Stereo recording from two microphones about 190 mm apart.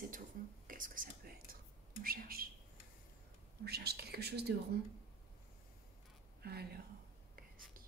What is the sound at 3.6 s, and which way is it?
Speech, 55° right (ahead or behind).